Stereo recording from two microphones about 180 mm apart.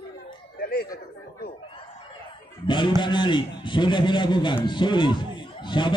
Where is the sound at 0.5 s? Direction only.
60° left (ahead or behind).